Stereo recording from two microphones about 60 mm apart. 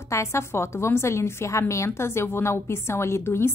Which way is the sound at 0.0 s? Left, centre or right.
Left.